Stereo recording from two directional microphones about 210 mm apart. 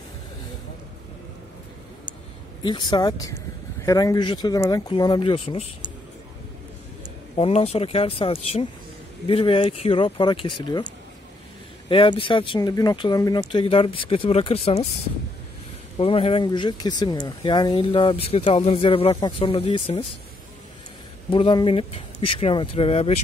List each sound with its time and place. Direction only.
2.6 s speech: 20° left (ahead or behind)
7.3 s speech: 30° left (ahead or behind)
11.9 s speech: 25° left (ahead or behind)
16.0 s speech: 25° left (ahead or behind)
21.3 s speech: 25° left (ahead or behind)